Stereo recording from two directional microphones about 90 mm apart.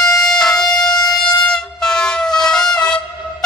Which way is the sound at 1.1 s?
10° left (ahead or behind).